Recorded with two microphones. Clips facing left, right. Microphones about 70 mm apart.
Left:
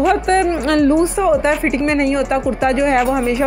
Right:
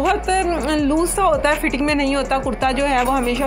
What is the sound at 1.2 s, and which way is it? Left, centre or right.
Speech, centre.